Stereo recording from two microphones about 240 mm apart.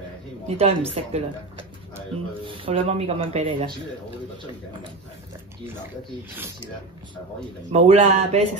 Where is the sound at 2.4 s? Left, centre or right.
Right.